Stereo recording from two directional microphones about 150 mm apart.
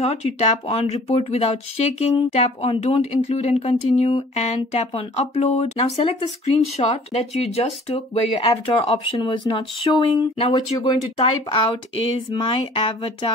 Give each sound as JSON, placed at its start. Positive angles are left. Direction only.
{"t": 0.0, "sound": "speech", "side_deg": 45}